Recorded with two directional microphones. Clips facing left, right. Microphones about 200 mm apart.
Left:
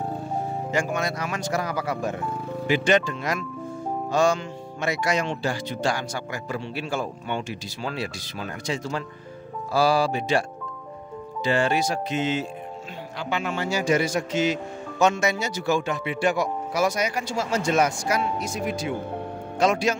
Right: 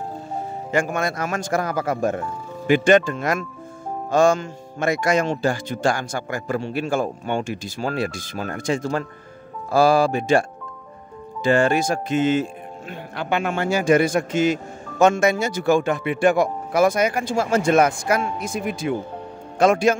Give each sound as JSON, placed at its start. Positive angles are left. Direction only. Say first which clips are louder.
{"t": 0.7, "sound": "speech", "louder": "right 5 dB", "side_deg": -55}
{"t": 11.4, "sound": "speech", "louder": "right 5 dB", "side_deg": -50}